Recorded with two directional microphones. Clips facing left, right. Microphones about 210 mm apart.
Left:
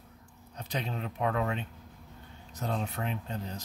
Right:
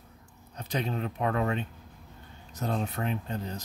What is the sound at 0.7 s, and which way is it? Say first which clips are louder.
Speech: right 4 dB; 45° right (ahead or behind).